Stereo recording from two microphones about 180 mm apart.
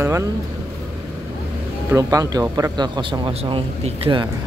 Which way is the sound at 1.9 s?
20° right (ahead or behind).